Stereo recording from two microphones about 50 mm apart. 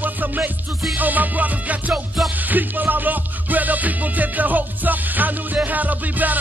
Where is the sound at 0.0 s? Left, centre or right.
Right.